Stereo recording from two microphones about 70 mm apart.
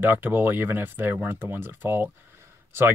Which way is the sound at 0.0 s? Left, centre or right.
Right.